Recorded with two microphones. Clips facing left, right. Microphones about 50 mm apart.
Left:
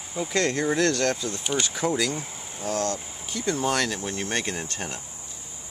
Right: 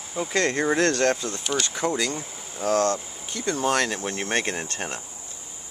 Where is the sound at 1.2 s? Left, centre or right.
Centre.